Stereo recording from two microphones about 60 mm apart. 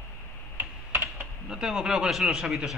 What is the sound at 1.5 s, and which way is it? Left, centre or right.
A man's voice, centre.